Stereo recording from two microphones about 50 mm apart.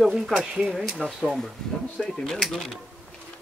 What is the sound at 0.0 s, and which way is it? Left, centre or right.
Speech, centre.